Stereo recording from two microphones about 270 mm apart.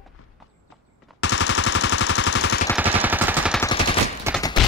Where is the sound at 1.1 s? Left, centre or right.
Left.